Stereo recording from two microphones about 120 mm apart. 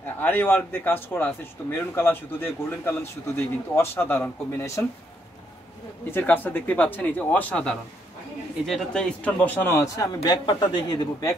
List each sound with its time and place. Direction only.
0.0 s a man's voice: 15° left (ahead or behind)
6.0 s a man's voice: 15° left (ahead or behind); by 11.3 s 30° left (ahead or behind)